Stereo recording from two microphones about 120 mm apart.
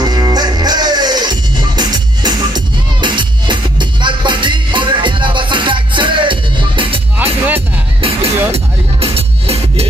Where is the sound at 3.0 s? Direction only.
40° right (ahead or behind).